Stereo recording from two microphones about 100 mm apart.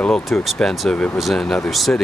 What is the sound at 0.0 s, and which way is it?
Speech, 5° left (ahead or behind).